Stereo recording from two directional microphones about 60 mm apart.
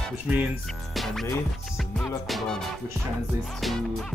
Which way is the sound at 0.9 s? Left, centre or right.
Centre.